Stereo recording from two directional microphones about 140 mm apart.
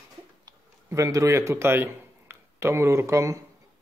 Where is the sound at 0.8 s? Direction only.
20° right (ahead or behind).